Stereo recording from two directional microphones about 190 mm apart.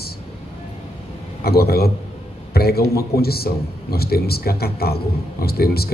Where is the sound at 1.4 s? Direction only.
55° left (ahead or behind).